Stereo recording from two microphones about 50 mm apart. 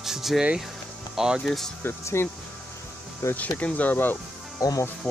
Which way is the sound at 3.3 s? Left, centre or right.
Left.